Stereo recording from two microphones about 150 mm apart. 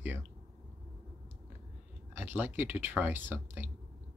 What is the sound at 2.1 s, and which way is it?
Speech, 15° right (ahead or behind).